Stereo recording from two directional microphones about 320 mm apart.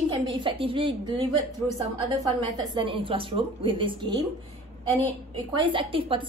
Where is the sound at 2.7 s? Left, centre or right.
Centre.